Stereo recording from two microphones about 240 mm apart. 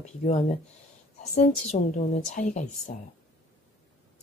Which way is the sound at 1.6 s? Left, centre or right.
Left.